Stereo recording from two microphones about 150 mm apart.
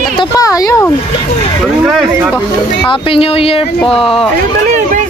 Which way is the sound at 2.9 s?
40° left (ahead or behind).